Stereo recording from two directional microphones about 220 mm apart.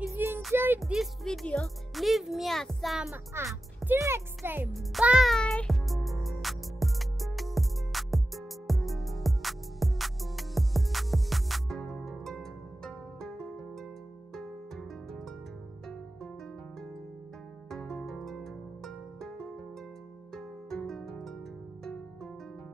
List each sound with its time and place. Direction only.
0.1 s music: 10° right (ahead or behind)
0.4 s speech: 5° right (ahead or behind)
4.7 s music: centre (ahead or behind)
17.6 s music: 5° left (ahead or behind)